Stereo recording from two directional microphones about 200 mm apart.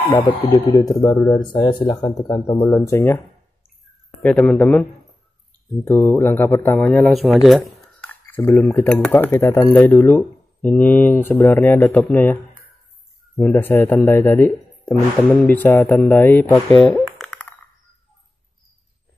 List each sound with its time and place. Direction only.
0.4 s speech: 20° left (ahead or behind)
4.2 s speech: 5° left (ahead or behind)
5.9 s speech: 10° left (ahead or behind)
13.4 s speech: 10° left (ahead or behind)
17.2 s a sound: 5° left (ahead or behind)